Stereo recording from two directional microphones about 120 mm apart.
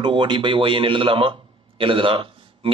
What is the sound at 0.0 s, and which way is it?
A man's voice, 40° right (ahead or behind).